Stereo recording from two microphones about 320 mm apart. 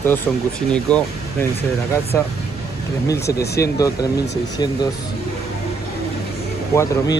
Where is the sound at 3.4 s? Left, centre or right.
Left.